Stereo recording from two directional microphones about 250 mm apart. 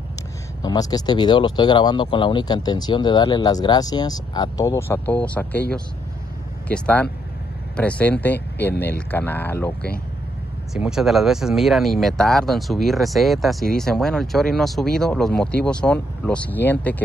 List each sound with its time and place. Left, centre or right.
0.6 s speech: centre
10.7 s speech: centre